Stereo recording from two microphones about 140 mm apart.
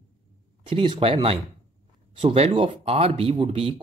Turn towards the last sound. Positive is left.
turn(degrees=-40)  # may be behind; listen again after turning